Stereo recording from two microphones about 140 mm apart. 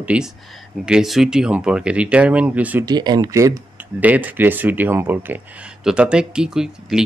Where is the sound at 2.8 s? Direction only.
30° right (ahead or behind).